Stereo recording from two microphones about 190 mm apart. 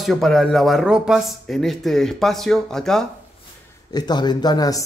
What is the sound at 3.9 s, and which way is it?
Speech, 20° left (ahead or behind).